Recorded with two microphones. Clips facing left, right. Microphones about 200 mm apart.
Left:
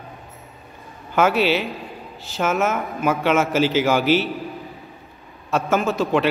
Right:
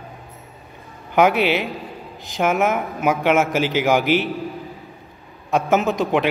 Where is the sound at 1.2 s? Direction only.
15° right (ahead or behind).